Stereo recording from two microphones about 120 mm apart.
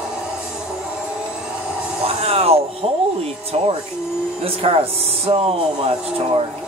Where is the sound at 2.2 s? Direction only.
55° right (ahead or behind).